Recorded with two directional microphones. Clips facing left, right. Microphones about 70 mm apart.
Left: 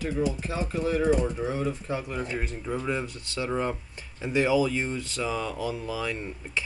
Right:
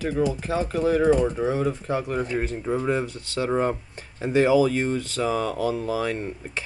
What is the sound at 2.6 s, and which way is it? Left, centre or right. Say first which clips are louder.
Speech: right 5 dB; right.